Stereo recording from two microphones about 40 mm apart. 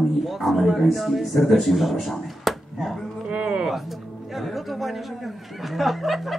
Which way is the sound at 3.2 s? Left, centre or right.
Right.